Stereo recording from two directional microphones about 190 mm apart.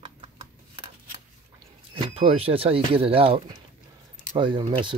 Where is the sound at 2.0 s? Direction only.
30° right (ahead or behind).